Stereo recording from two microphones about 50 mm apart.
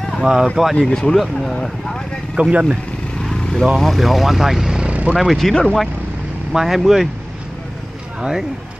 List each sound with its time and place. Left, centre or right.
0.2 s speech: centre
0.7 s speech: centre
2.4 s speech: right
3.2 s vehicle: centre
3.7 s speech: centre
4.7 s vehicle: right
5.1 s speech: centre
5.5 s speech: centre
6.5 s speech: centre
8.2 s speech: centre